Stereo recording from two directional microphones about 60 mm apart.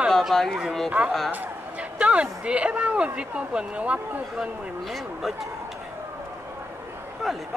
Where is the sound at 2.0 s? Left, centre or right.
Centre.